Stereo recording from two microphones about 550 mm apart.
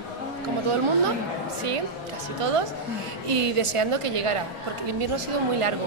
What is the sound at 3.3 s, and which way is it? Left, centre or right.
A woman's voice, right.